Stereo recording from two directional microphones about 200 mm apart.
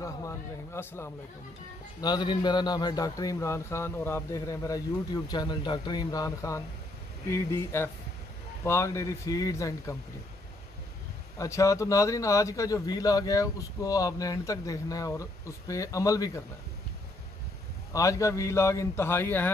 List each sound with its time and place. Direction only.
0.0 s a man's voice: 15° left (ahead or behind)
11.3 s speech: 15° left (ahead or behind)
17.9 s speech: 15° left (ahead or behind)